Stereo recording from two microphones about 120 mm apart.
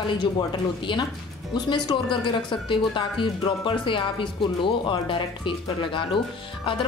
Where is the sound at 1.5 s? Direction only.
40° left (ahead or behind).